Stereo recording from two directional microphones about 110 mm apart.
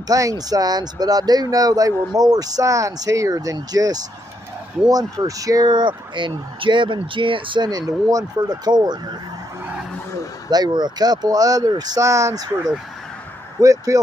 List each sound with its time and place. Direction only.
0.1 s speech: 30° right (ahead or behind)
8.1 s speech: 30° right (ahead or behind)
10.5 s speech: 40° right (ahead or behind)
13.6 s speech: 30° right (ahead or behind)